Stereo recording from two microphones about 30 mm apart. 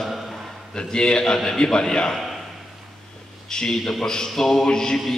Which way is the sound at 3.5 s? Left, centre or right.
Left.